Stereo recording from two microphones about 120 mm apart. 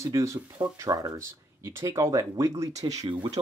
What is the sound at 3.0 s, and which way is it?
Speech, 40° right (ahead or behind).